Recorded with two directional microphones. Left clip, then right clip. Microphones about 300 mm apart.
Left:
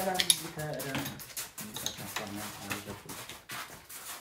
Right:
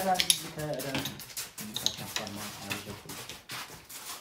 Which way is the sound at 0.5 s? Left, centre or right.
Centre.